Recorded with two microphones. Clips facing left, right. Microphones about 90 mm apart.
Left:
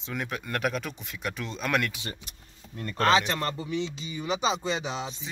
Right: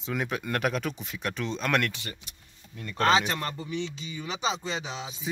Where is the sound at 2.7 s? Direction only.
45° left (ahead or behind).